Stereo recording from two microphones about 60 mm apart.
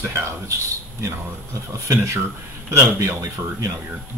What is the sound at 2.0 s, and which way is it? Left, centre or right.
Speech, right.